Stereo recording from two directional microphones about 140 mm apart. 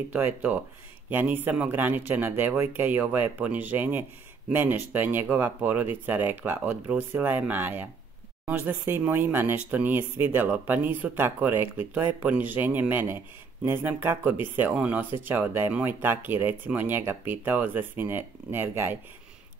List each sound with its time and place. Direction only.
0.1 s speech: 10° right (ahead or behind)